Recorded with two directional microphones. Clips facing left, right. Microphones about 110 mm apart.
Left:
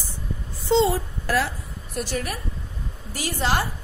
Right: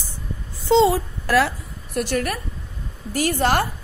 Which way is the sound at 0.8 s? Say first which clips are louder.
Right 4 dB; 80° right.